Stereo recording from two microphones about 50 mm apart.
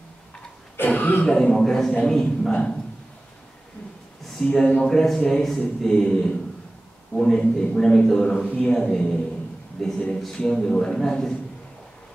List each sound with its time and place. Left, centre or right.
0.7 s cough: left
1.2 s a man's voice: centre
4.4 s a man's voice: centre